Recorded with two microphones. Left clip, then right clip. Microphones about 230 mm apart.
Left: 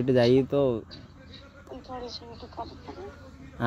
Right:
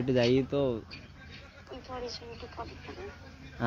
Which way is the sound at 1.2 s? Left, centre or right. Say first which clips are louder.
Left 3 dB; centre.